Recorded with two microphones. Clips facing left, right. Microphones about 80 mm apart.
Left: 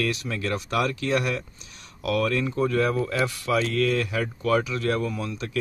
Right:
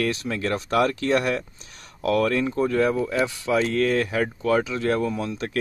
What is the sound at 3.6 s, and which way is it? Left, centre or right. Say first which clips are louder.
Speech: right 4 dB; right.